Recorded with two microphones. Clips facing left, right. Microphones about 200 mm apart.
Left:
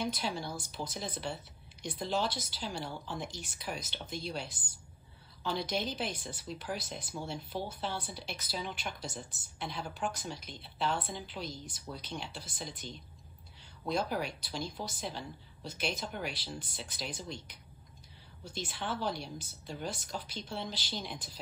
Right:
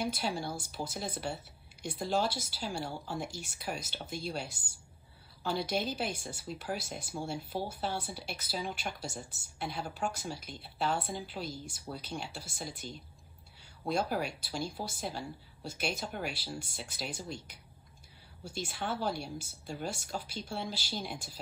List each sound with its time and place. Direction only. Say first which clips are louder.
0.0 s speech: right 1 dB; 10° right (ahead or behind)